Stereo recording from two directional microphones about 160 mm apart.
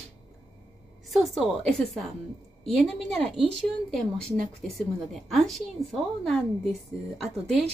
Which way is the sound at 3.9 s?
5° left (ahead or behind).